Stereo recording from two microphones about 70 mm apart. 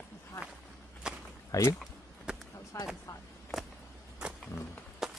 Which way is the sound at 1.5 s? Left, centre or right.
Left.